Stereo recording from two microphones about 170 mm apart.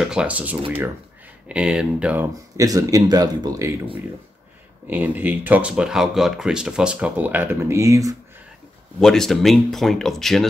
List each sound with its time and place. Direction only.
0.1 s speech: 5° right (ahead or behind)
2.5 s speech: 20° right (ahead or behind)
4.8 s speech: 10° right (ahead or behind)
9.0 s speech: centre (ahead or behind)